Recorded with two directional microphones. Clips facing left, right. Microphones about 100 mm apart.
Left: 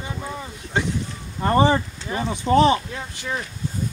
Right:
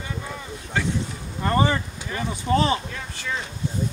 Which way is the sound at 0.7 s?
20° left (ahead or behind).